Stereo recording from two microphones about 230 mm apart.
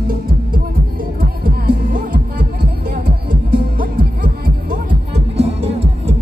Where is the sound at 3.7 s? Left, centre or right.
Right.